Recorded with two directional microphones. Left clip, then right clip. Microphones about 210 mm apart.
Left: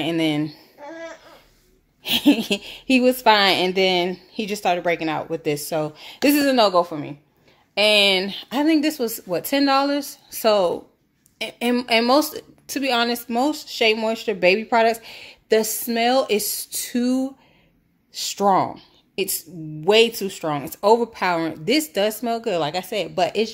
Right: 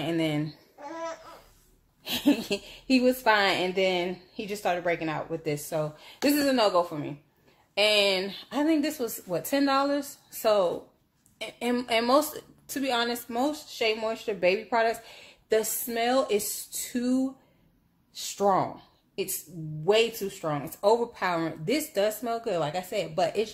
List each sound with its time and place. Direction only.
0.0 s speech: 40° left (ahead or behind)
0.7 s a sound: 5° right (ahead or behind)
2.0 s a woman's voice: 40° left (ahead or behind)